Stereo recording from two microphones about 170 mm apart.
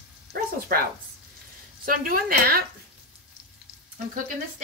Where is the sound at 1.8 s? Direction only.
55° right (ahead or behind).